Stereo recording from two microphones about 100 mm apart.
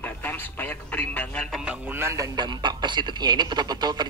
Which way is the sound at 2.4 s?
50° right (ahead or behind).